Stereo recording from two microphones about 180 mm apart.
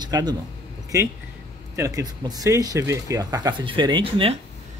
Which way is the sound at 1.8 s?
20° right (ahead or behind).